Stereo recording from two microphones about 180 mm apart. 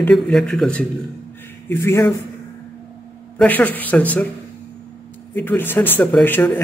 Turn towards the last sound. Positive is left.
turn(degrees=10)  # may be behind; listen again after turning